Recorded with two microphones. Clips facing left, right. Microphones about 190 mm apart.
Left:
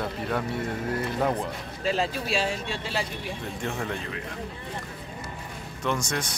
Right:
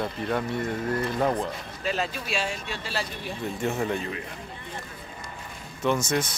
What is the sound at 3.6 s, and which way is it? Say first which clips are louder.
Speech: right 5 dB; 5° right (ahead or behind).